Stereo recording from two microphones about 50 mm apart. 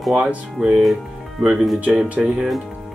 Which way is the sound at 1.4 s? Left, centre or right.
Centre.